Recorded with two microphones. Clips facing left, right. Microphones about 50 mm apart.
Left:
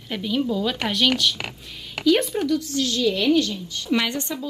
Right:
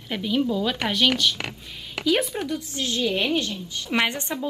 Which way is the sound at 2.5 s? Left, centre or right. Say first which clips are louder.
Left 5 dB; right.